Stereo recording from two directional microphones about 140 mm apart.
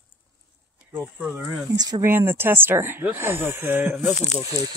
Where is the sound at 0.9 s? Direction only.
15° right (ahead or behind).